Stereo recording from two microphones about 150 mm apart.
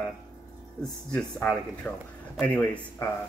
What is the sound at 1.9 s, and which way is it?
Speech, 10° left (ahead or behind).